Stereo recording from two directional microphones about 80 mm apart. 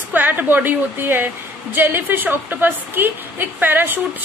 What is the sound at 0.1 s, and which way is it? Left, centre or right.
A woman's voice, right.